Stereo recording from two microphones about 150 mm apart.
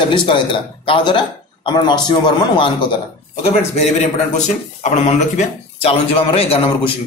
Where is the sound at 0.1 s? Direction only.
35° left (ahead or behind).